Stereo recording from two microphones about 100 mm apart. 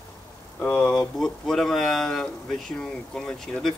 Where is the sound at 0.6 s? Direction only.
10° left (ahead or behind).